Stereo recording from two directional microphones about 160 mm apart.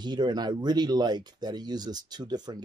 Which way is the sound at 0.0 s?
25° right (ahead or behind).